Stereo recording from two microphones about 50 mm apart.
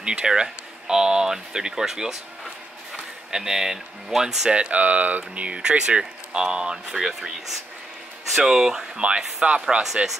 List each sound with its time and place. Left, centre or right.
0.0 s speech: centre
3.3 s speech: centre
4.6 s speech: right